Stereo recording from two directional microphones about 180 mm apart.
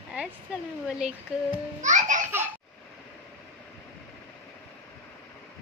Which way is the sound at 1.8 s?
40° right (ahead or behind).